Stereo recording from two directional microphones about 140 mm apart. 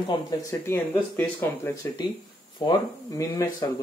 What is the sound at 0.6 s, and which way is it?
Speech, 15° left (ahead or behind).